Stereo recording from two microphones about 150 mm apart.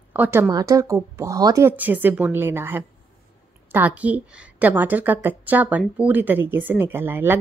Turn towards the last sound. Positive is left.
turn(degrees=-15)  # may be behind; listen again after turning